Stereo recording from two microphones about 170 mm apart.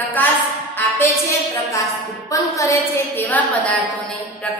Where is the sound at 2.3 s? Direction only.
20° left (ahead or behind).